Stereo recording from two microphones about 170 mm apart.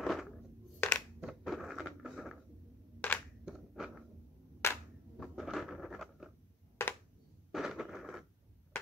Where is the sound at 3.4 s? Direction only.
5° right (ahead or behind).